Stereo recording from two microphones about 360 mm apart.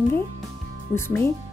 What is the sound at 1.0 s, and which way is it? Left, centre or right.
Speech, centre.